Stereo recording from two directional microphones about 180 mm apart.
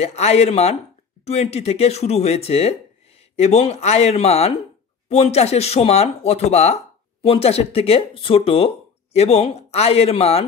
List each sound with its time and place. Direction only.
0.0 s speech: 35° left (ahead or behind)